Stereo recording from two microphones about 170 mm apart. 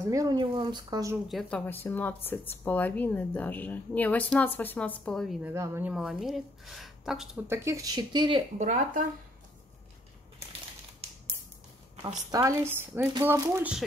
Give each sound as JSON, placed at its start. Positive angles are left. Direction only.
{"t": 0.1, "sound": "speech", "side_deg": -20}
{"t": 1.3, "sound": "speech", "side_deg": 10}
{"t": 5.4, "sound": "speech", "side_deg": -15}
{"t": 7.4, "sound": "speech", "side_deg": -15}
{"t": 8.5, "sound": "speech", "side_deg": -50}
{"t": 12.3, "sound": "a woman's voice", "side_deg": -20}